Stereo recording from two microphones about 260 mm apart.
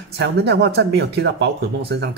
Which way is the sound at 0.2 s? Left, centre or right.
Right.